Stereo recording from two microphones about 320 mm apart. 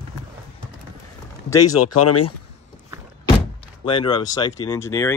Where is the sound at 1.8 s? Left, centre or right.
Left.